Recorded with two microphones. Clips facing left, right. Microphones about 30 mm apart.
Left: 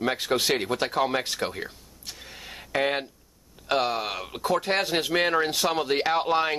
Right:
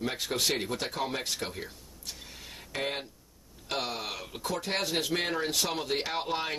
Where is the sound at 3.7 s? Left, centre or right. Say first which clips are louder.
Left 8 dB; left.